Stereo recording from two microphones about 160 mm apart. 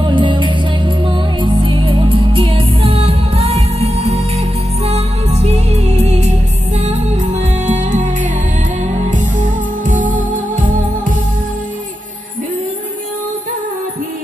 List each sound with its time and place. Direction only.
0.0 s music: 30° right (ahead or behind); by 10.6 s 55° right (ahead or behind)